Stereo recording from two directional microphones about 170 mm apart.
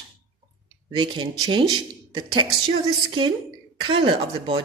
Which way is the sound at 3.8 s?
30° right (ahead or behind).